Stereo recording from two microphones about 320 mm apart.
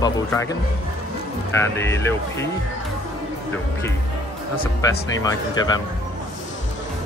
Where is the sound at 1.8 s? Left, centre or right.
Centre.